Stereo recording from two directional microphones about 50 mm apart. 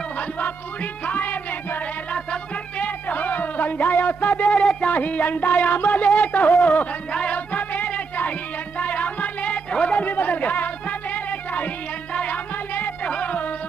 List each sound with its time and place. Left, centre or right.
1.0 s speech: left
2.8 s a sound: left
4.8 s speech: left
7.1 s music: left
10.0 s music: left